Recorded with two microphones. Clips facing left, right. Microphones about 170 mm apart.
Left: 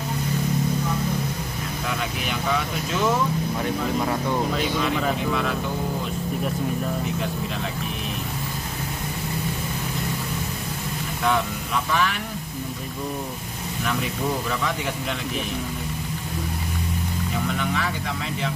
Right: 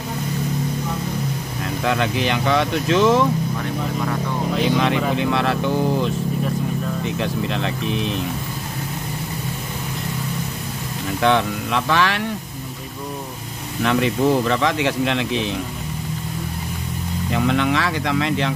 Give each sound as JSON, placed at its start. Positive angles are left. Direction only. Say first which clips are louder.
{"t": 1.9, "sound": "speech", "louder": "right 10 dB", "side_deg": -75}
{"t": 5.1, "sound": "speech", "louder": "right 5 dB", "side_deg": -70}
{"t": 7.1, "sound": "speech", "louder": "right 4 dB", "side_deg": -75}
{"t": 11.2, "sound": "speech", "louder": "right 5 dB", "side_deg": -75}
{"t": 13.8, "sound": "speech", "louder": "right 9 dB", "side_deg": -75}
{"t": 17.3, "sound": "speech", "louder": "right 9 dB", "side_deg": -80}